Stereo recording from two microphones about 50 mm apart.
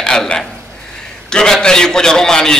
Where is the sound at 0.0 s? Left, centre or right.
Centre.